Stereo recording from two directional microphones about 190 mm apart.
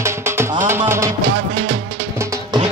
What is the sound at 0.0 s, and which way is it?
Music, 15° right (ahead or behind).